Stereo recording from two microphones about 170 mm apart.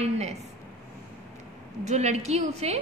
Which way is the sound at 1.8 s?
40° right (ahead or behind).